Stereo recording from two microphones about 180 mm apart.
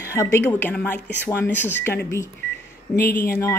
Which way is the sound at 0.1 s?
15° left (ahead or behind).